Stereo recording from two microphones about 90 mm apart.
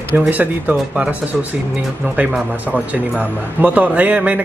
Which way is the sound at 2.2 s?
20° right (ahead or behind).